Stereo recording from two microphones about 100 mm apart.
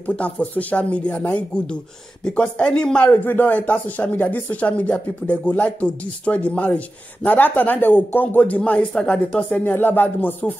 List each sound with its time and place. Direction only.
0.0 s speech: 15° left (ahead or behind)
9.8 s music: 20° left (ahead or behind)